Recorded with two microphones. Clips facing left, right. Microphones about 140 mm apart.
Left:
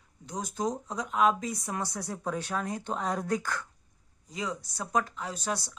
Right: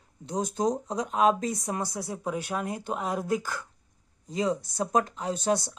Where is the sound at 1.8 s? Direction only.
15° right (ahead or behind).